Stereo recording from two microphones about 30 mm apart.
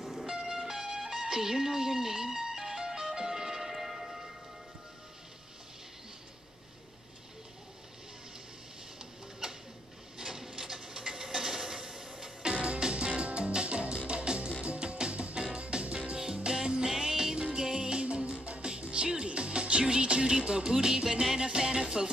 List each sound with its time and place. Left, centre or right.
0.0 s music: centre
3.6 s music: centre
10.1 s a sound: centre
12.4 s music: right
13.0 s music: right
18.8 s music: right